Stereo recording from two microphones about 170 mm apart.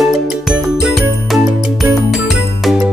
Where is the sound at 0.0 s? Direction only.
Centre (ahead or behind).